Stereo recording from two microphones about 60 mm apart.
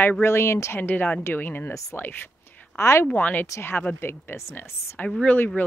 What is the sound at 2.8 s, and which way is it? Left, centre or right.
Speech, left.